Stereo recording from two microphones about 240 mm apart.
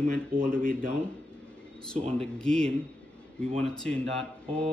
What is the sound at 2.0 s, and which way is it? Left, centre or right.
Speech, centre.